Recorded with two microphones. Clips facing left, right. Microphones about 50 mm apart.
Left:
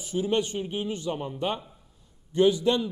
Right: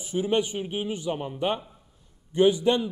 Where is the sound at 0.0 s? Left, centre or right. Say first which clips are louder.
Right 1 dB; right.